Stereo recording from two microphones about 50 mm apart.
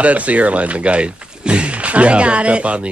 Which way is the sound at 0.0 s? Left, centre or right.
Right.